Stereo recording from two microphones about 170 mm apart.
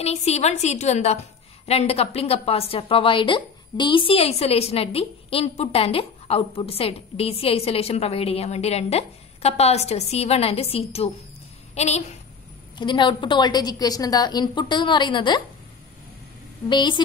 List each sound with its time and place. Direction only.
0.0 s a woman's voice: 40° left (ahead or behind)
11.7 s a sound: 40° left (ahead or behind)
12.7 s a woman's voice: 30° left (ahead or behind)
16.6 s a woman's voice: 25° left (ahead or behind)